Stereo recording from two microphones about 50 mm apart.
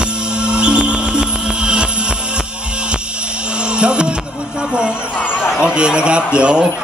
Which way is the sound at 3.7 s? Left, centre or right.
Right.